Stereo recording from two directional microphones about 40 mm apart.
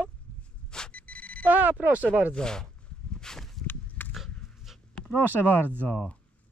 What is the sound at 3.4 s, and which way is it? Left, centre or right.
Walk, centre.